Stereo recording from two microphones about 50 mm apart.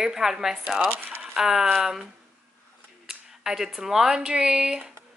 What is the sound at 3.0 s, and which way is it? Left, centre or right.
A woman's voice, centre.